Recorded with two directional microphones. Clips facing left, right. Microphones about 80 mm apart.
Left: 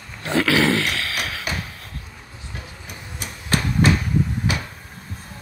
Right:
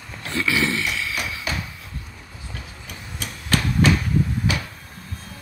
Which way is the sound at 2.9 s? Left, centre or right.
Left.